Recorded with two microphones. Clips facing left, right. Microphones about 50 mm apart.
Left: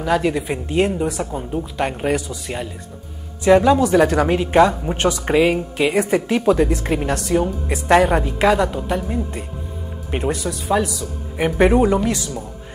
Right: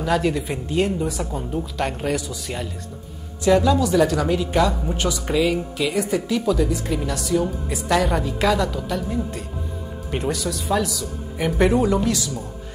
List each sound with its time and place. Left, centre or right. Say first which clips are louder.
0.0 s speech: left 2 dB; centre